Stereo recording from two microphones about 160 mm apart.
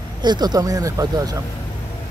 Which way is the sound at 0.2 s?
25° right (ahead or behind).